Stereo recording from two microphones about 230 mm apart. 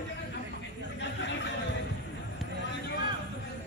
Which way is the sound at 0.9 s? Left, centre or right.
Left.